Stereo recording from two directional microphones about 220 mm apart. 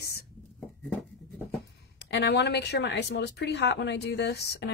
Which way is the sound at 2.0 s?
50° left (ahead or behind).